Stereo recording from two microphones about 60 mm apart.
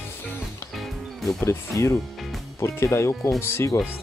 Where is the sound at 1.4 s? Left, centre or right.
Left.